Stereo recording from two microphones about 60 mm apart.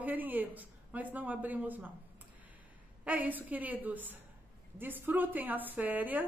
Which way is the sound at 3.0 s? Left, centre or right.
Right.